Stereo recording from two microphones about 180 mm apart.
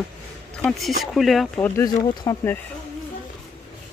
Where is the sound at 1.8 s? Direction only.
15° left (ahead or behind).